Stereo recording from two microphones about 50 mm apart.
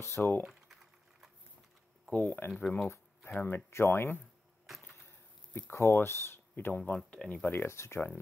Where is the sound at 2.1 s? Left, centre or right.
Left.